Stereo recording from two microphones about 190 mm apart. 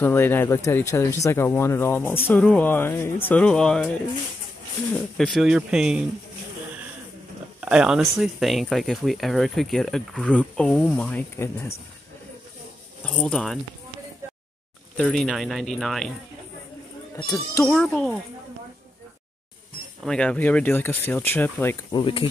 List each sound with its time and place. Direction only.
0.0 s speech: 10° left (ahead or behind)
5.1 s speech: centre (ahead or behind)
7.6 s speech: 5° right (ahead or behind); by 11.7 s 15° left (ahead or behind)
13.0 s speech: 5° left (ahead or behind)
15.0 s speech: centre (ahead or behind)
17.6 s speech: centre (ahead or behind)
20.0 s speech: 5° left (ahead or behind)
21.9 s speech: 25° left (ahead or behind)